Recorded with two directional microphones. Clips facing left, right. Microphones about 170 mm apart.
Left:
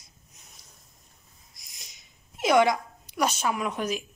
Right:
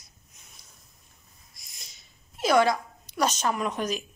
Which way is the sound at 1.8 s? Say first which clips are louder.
Even; 15° left (ahead or behind).